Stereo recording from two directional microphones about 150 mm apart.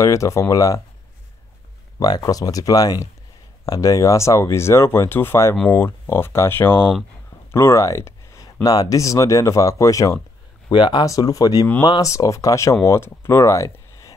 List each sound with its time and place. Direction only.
0.0 s speech: 20° left (ahead or behind)
2.0 s speech: 25° left (ahead or behind)
7.5 s a sound: 20° left (ahead or behind)
8.6 s speech: 25° left (ahead or behind)